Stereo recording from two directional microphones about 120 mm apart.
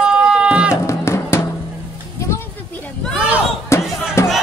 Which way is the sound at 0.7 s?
25° left (ahead or behind).